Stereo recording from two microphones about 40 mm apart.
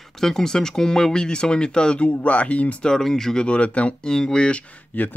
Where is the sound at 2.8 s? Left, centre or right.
Centre.